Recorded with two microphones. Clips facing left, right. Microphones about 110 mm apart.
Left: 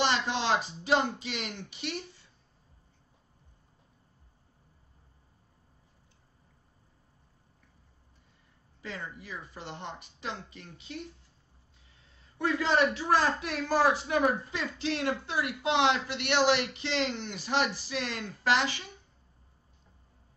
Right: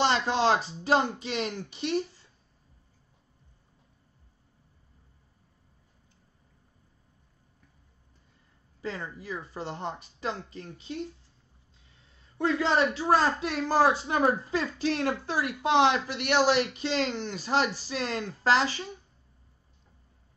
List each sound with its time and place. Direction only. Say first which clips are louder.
0.0 s speech: right 4 dB; 40° right (ahead or behind)
8.8 s speech: right 5 dB; 35° right (ahead or behind)
12.4 s speech: right 2 dB; 30° right (ahead or behind)